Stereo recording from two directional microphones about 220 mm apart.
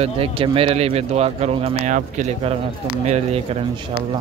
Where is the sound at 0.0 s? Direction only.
25° right (ahead or behind).